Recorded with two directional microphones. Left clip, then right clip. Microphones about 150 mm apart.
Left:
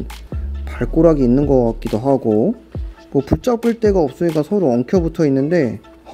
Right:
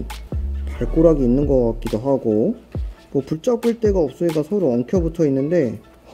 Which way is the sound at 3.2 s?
25° left (ahead or behind).